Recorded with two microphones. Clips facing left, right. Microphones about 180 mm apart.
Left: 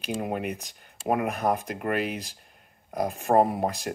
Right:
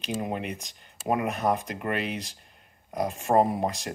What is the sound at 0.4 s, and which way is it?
Speech, 5° left (ahead or behind).